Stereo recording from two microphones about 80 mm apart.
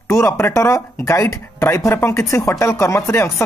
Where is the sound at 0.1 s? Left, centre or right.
Left.